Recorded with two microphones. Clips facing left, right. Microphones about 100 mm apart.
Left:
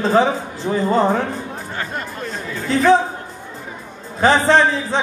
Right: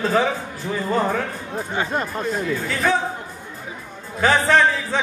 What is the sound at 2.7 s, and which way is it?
Speech, 25° left (ahead or behind).